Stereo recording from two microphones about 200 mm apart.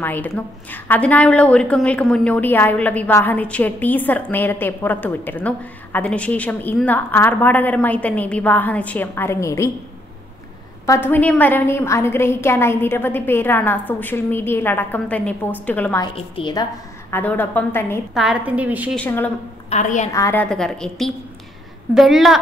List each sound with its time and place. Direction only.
0.0 s a woman's voice: 10° left (ahead or behind)
10.9 s a woman's voice: 10° left (ahead or behind)
16.0 s a woman's voice: 25° left (ahead or behind)
17.1 s a woman's voice: 10° left (ahead or behind)
18.1 s a woman's voice: 5° right (ahead or behind)
18.9 s a woman's voice: 10° left (ahead or behind)
19.7 s a woman's voice: 35° left (ahead or behind)
20.1 s a woman's voice: 15° left (ahead or behind); by 22.4 s centre (ahead or behind)